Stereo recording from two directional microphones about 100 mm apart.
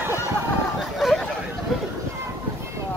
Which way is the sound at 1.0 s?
Centre (ahead or behind).